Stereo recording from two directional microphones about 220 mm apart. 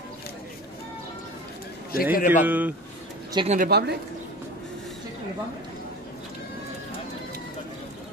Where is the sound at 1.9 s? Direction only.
40° left (ahead or behind).